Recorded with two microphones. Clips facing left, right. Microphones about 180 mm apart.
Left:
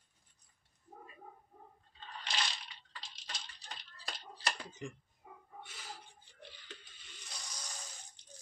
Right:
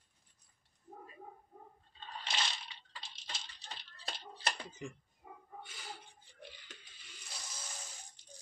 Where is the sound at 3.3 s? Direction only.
25° right (ahead or behind).